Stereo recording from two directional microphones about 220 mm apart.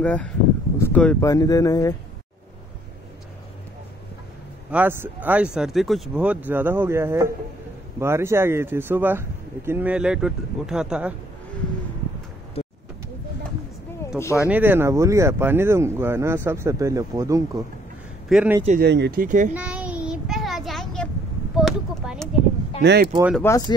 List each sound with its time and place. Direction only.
0.0 s speech: 5° left (ahead or behind)
4.6 s speech: 10° right (ahead or behind)
12.6 s vehicle: 30° left (ahead or behind)
14.1 s speech: 15° left (ahead or behind)
14.5 s speech: 10° right (ahead or behind)
18.7 s speech: 45° right (ahead or behind)
19.5 s child singing: 5° right (ahead or behind)
21.5 s a sound: centre (ahead or behind)
22.8 s speech: 50° right (ahead or behind)
23.3 s speech: 10° left (ahead or behind)